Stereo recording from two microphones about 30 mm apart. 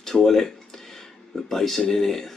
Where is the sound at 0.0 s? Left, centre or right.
Centre.